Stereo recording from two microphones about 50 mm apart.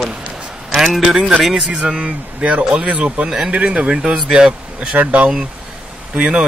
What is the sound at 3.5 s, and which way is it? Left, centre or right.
Speech, right.